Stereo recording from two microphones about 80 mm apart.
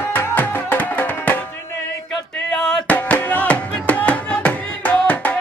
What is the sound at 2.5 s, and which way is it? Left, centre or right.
Music, centre.